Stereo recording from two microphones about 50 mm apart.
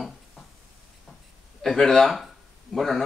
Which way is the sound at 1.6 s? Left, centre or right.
Centre.